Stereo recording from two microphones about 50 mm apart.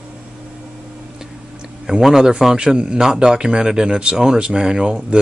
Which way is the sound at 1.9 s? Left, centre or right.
Centre.